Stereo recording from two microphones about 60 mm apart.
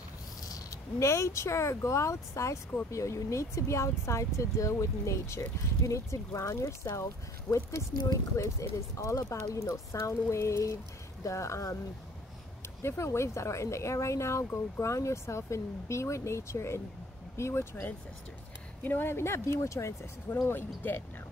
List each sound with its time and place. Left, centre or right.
0.5 s speech: left
8.1 s speech: left
9.9 s speech: left
12.8 s speech: left
18.8 s speech: left
20.4 s speech: left